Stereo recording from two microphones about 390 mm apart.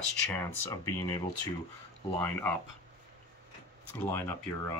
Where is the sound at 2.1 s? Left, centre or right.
Centre.